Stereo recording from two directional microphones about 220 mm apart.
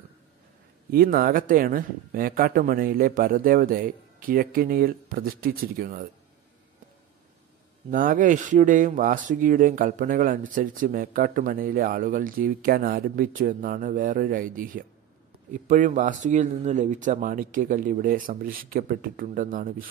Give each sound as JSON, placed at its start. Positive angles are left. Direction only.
{"t": 0.9, "sound": "speech", "side_deg": -40}
{"t": 7.9, "sound": "speech", "side_deg": -40}